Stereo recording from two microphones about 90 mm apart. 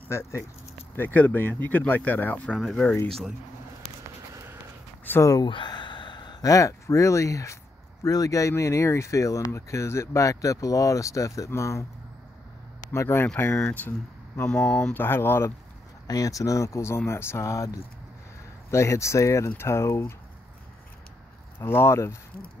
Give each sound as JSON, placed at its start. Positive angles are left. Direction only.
{"t": 0.1, "sound": "speech", "side_deg": 30}
{"t": 2.5, "sound": "speech", "side_deg": 5}
{"t": 5.2, "sound": "speech", "side_deg": 40}
{"t": 5.5, "sound": "sigh", "side_deg": 60}
{"t": 6.4, "sound": "speech", "side_deg": 40}
{"t": 12.9, "sound": "speech", "side_deg": 30}
{"t": 13.6, "sound": "speech", "side_deg": 10}
{"t": 13.8, "sound": "speech", "side_deg": 30}
{"t": 14.5, "sound": "speech", "side_deg": 10}
{"t": 15.0, "sound": "speech", "side_deg": 25}
{"t": 16.1, "sound": "speech", "side_deg": 40}
{"t": 21.5, "sound": "speech", "side_deg": 25}